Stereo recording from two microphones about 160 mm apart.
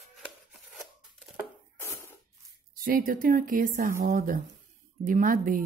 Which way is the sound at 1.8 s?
15° left (ahead or behind).